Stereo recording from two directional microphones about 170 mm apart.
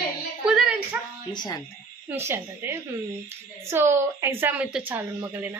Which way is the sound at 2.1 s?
15° right (ahead or behind).